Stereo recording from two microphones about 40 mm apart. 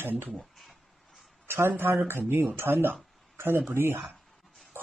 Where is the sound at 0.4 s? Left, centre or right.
Centre.